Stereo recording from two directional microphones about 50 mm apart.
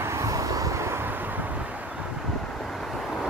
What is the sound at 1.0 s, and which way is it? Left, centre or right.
Vehicle, right.